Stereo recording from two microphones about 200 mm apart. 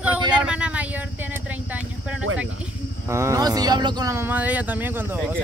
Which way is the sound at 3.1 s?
15° right (ahead or behind).